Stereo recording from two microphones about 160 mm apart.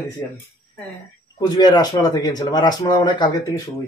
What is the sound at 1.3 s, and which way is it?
A man's voice, 25° left (ahead or behind).